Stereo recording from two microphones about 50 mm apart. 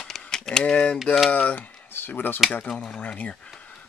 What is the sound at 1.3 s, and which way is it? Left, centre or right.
Speech, left.